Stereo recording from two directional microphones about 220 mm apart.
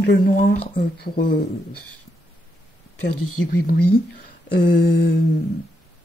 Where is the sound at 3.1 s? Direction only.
90° left.